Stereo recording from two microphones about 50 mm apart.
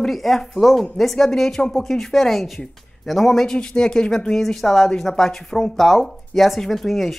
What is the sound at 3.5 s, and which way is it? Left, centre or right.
Speech, centre.